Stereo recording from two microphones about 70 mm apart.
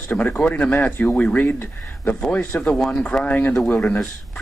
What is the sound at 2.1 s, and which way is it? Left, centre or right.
Speech, left.